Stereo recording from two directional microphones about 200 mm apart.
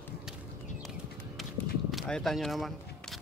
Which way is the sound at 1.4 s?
Centre (ahead or behind).